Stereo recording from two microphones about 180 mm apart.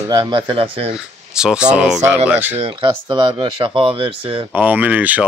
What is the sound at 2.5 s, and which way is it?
Speech, 30° right (ahead or behind).